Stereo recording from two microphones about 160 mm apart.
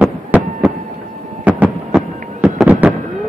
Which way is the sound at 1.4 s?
10° right (ahead or behind).